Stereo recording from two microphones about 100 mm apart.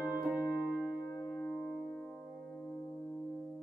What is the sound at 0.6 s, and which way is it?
Music, centre (ahead or behind).